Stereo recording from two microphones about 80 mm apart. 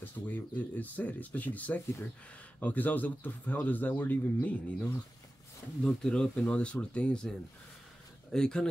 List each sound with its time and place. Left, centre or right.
0.0 s a man's voice: left
5.9 s speech: centre